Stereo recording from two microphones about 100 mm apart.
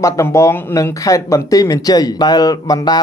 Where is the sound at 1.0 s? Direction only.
35° left (ahead or behind).